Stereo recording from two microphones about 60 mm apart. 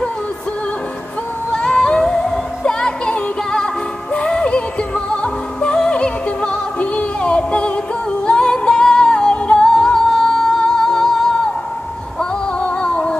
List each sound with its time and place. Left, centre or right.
1.5 s singing: centre
2.6 s music: centre